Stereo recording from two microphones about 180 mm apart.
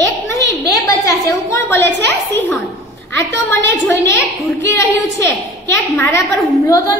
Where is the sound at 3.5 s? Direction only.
15° left (ahead or behind).